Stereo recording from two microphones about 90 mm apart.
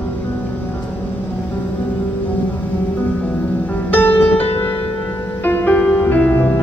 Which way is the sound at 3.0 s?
15° left (ahead or behind).